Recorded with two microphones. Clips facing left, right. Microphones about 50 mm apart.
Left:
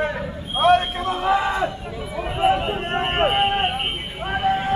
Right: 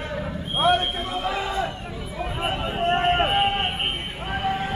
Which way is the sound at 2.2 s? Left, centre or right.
Centre.